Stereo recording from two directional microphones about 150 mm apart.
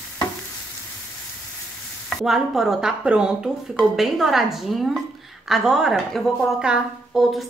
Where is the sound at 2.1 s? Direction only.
Centre (ahead or behind).